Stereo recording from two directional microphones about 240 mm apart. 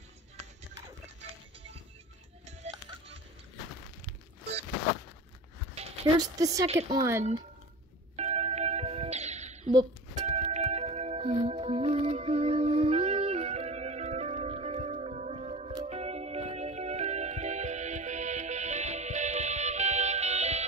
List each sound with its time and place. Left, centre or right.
2.4 s music: right
6.1 s a woman's voice: centre
8.2 s music: right